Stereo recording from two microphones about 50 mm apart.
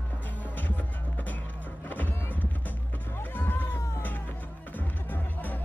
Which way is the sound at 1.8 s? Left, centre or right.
Left.